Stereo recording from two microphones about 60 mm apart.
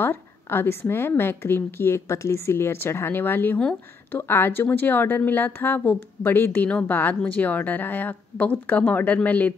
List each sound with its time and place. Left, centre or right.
0.0 s a woman's voice: left